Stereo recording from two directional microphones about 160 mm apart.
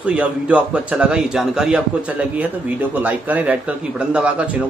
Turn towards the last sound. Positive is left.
turn(degrees=-5)  # may be behind; listen again after turning